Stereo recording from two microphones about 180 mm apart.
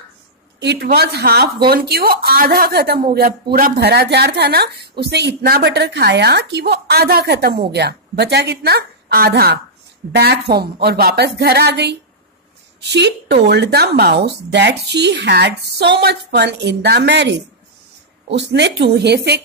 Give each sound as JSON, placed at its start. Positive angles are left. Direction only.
{"t": 0.6, "sound": "a woman's voice", "side_deg": -65}